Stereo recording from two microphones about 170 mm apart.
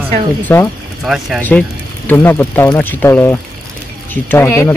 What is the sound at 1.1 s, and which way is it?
Speech, centre (ahead or behind).